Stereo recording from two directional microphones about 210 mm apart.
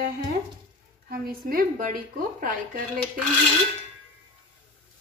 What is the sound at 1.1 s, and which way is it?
A woman's voice, 45° right (ahead or behind).